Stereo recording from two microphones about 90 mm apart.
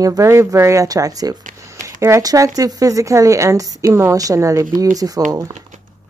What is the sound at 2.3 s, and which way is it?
Speech, 40° right (ahead or behind).